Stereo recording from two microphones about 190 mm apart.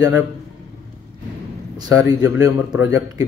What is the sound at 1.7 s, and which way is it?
Speech, 20° right (ahead or behind).